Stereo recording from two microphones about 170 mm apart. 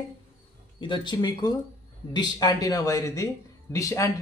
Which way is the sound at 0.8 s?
25° left (ahead or behind).